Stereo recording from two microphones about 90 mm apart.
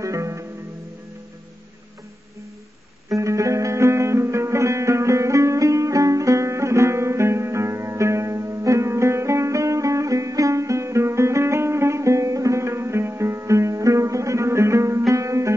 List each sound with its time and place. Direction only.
0.0 s music: 35° right (ahead or behind)
3.2 s music: 35° right (ahead or behind)